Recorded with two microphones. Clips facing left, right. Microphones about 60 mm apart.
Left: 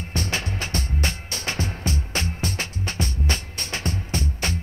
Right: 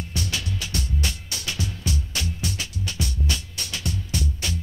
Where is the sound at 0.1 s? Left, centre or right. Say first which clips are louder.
Left 5 dB; left.